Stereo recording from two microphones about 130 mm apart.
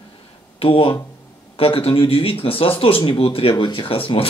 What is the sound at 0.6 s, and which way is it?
Speech, 45° left (ahead or behind).